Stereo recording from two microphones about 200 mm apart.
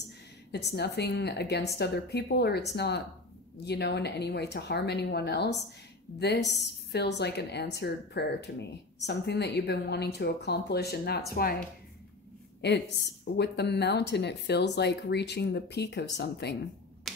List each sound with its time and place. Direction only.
0.5 s a woman's voice: 55° left (ahead or behind)
12.6 s a woman's voice: 60° left (ahead or behind)